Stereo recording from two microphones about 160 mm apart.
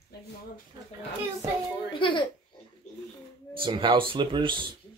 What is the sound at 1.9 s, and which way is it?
Speech, 30° left (ahead or behind).